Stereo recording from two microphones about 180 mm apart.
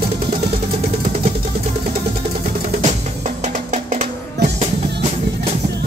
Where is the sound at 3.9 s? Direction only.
40° right (ahead or behind).